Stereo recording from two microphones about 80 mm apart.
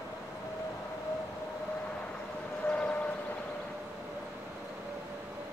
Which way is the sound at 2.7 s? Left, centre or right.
Centre.